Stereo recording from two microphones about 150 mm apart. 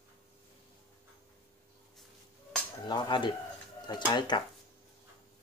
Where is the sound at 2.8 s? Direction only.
30° left (ahead or behind).